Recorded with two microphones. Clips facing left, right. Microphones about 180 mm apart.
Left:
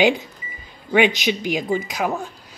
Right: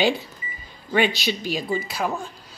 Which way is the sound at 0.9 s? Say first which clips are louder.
Left 4 dB; 15° left (ahead or behind).